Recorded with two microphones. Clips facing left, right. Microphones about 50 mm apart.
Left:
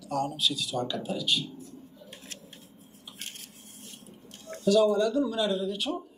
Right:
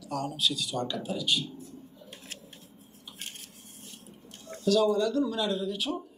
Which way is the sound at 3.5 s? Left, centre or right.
Left.